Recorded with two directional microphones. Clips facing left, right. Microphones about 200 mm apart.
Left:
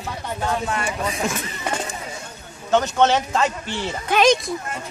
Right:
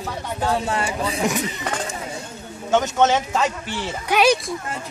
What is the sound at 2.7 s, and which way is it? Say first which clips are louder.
Speech: even; 5° right (ahead or behind).